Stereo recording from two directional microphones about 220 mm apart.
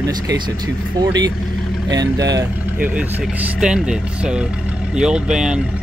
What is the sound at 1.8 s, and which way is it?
Speech, 15° right (ahead or behind).